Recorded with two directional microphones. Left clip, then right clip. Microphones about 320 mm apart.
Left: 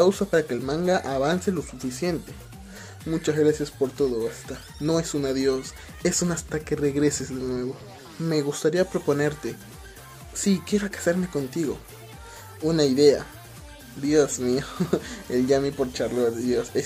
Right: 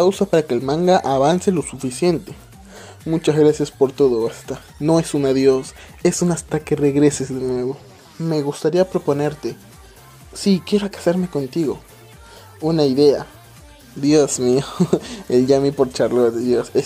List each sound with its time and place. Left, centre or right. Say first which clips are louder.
0.0 s speech: right 5 dB; centre